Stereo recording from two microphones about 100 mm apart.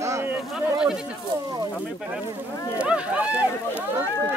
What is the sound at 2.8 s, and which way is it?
Speech, 10° right (ahead or behind).